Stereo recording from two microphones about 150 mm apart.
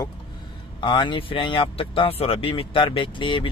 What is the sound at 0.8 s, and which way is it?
Speech, 30° left (ahead or behind).